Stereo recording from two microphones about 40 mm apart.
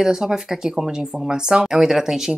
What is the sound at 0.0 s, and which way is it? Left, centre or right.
Speech, centre.